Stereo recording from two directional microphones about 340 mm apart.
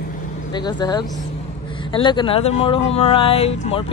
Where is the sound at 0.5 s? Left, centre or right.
Centre.